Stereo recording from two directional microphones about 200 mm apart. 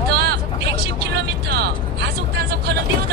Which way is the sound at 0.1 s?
55° right (ahead or behind).